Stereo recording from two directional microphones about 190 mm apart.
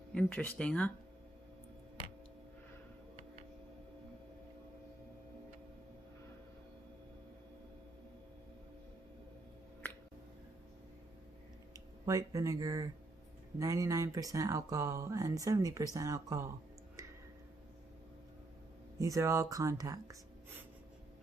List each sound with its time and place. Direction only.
0.1 s speech: 5° left (ahead or behind)
11.7 s speech: 15° right (ahead or behind)
18.9 s speech: 15° right (ahead or behind)